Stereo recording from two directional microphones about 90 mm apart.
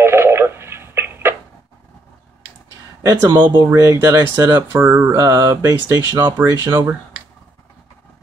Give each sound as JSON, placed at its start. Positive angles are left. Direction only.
{"t": 0.0, "sound": "telephone", "side_deg": -30}
{"t": 3.0, "sound": "speech", "side_deg": -50}
{"t": 4.7, "sound": "mantra", "side_deg": -25}
{"t": 5.1, "sound": "speech", "side_deg": -40}